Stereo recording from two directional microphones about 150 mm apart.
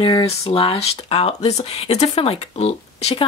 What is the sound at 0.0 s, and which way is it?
Speech, 35° left (ahead or behind).